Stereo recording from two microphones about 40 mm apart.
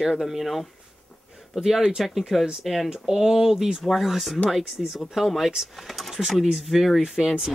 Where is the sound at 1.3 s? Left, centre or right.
Centre.